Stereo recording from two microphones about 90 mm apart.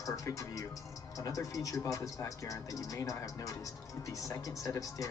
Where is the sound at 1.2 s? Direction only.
40° left (ahead or behind).